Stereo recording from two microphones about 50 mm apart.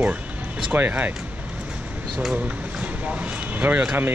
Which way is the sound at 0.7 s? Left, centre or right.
Right.